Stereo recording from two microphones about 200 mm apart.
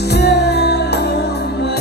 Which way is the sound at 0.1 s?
55° left (ahead or behind).